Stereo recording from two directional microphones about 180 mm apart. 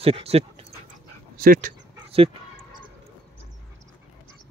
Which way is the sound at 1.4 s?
50° right (ahead or behind).